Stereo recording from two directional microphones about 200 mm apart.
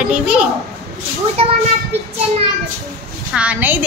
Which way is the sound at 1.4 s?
30° right (ahead or behind).